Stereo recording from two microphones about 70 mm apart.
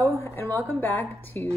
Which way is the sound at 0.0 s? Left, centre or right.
Left.